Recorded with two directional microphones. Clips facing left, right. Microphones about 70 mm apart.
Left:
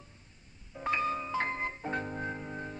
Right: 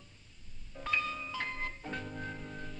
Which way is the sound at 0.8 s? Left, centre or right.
Left.